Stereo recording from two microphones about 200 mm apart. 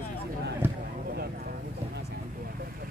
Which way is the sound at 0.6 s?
10° right (ahead or behind).